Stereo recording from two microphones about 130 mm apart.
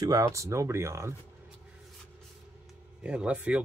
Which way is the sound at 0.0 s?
25° right (ahead or behind).